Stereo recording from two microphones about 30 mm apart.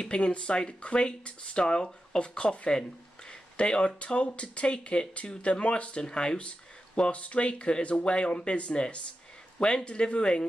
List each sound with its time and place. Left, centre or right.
0.0 s speech: left
7.1 s speech: left